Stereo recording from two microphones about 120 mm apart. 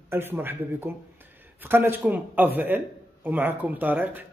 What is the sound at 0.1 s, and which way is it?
A man's voice, 20° right (ahead or behind).